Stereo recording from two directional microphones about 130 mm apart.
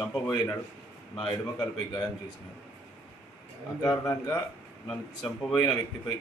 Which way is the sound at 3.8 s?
20° left (ahead or behind).